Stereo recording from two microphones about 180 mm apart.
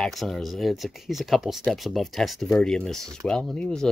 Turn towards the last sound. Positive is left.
turn(degrees=5)  # may be behind; listen again after turning